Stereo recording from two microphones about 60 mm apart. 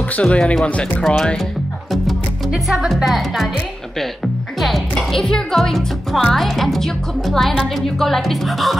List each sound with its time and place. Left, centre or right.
0.1 s speech: centre
1.0 s speech: centre
2.5 s speech: centre
4.6 s music: centre
5.1 s speech: centre